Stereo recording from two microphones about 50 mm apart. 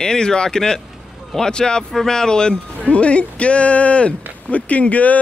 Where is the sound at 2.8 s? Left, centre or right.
Left.